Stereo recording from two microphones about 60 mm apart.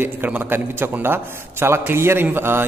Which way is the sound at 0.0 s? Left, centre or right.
Right.